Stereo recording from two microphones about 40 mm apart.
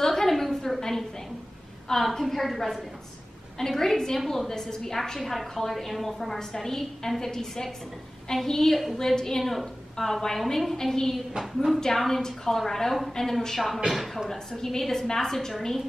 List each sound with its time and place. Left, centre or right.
0.0 s a sound: centre
2.0 s a woman's voice: centre
3.5 s a woman's voice: centre
9.4 s a woman's voice: centre